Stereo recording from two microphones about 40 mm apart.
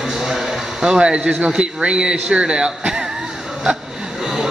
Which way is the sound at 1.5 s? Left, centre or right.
Right.